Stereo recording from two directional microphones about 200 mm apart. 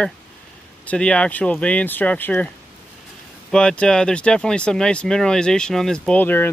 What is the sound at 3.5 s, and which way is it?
Speech, 5° left (ahead or behind).